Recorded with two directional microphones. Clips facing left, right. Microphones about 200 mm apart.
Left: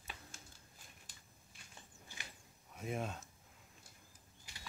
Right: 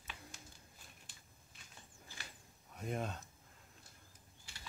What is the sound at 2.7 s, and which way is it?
Speech, centre (ahead or behind).